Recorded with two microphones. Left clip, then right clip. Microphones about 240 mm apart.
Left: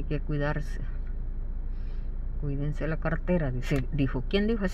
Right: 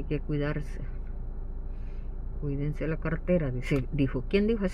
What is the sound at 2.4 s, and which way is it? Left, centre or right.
Speech, centre.